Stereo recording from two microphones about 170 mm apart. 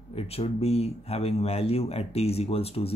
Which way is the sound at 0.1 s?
35° left (ahead or behind).